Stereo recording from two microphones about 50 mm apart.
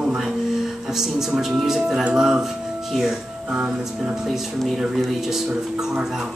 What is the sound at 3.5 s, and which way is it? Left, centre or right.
Speech, centre.